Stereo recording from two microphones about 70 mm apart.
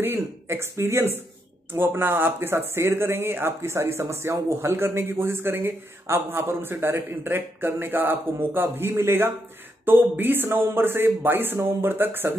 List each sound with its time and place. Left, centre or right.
0.0 s speech: right